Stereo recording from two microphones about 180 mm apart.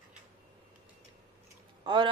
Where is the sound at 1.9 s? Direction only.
25° right (ahead or behind).